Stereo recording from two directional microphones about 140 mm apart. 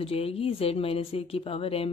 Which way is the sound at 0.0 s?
45° left (ahead or behind).